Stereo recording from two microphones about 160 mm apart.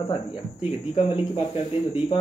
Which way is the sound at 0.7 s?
35° left (ahead or behind).